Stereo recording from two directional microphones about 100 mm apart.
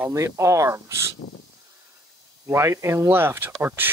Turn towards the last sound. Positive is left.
turn(degrees=-20)  # may be behind; listen again after turning